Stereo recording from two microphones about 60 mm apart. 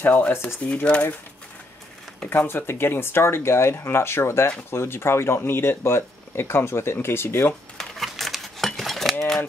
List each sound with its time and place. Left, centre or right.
0.0 s speech: left
2.2 s speech: left
7.7 s cutlery: centre